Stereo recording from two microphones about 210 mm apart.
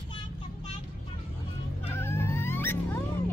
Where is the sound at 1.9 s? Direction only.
10° left (ahead or behind).